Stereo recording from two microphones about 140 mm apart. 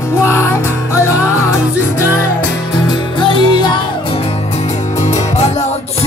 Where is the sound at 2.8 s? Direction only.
35° left (ahead or behind).